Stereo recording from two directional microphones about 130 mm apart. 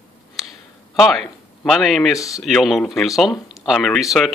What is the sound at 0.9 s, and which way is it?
Speech, centre (ahead or behind).